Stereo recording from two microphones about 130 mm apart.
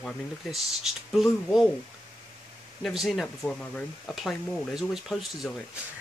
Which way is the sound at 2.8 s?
Centre (ahead or behind).